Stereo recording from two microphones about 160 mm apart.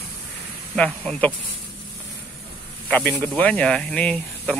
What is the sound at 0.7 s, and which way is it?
Speech, 5° left (ahead or behind).